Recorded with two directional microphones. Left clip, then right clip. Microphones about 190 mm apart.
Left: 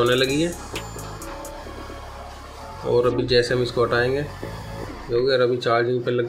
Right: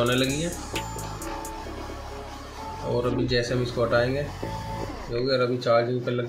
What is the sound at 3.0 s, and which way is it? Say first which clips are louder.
Speech: left 7 dB; 60° left (ahead or behind).